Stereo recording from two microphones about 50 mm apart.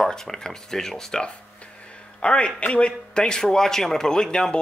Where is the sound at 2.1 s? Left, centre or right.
Centre.